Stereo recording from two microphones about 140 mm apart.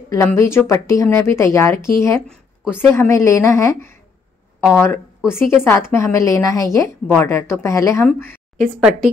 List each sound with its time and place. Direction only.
0.1 s a woman's voice: 20° left (ahead or behind)
8.5 s speech: centre (ahead or behind)